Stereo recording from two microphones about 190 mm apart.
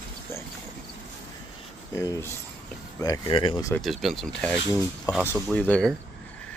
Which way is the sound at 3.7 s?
Centre (ahead or behind).